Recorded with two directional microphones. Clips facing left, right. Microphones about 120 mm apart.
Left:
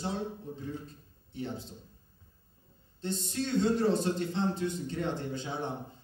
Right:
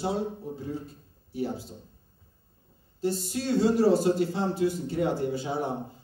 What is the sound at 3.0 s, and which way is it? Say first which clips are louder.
A man's voice: right 5 dB; 5° right (ahead or behind).